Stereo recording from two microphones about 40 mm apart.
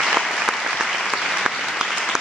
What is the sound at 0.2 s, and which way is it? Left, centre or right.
Applause, centre.